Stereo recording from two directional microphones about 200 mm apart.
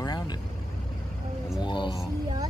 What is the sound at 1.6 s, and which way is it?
Speech, 25° left (ahead or behind).